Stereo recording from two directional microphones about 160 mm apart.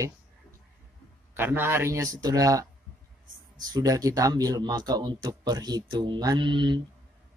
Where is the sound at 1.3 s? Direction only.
15° right (ahead or behind).